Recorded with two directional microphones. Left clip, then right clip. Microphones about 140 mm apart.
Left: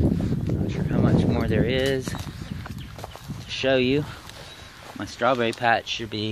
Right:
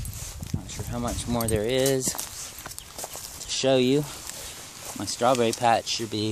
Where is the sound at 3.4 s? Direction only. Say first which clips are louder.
Even; 30° right (ahead or behind).